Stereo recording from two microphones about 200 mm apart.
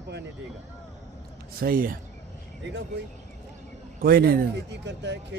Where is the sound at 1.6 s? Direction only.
45° right (ahead or behind).